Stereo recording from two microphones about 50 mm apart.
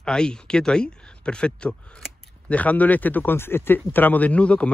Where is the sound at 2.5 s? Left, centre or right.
Left.